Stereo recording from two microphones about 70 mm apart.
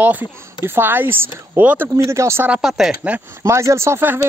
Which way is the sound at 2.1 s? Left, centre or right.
Right.